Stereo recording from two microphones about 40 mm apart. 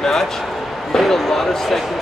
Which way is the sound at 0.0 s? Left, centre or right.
Centre.